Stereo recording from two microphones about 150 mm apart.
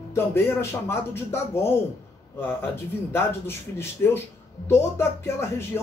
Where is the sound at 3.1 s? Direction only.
15° left (ahead or behind).